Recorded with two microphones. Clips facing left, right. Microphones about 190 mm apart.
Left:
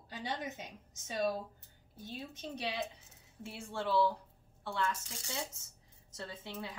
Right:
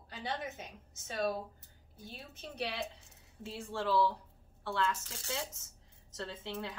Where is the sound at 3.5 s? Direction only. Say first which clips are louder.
Right 2 dB; 15° left (ahead or behind).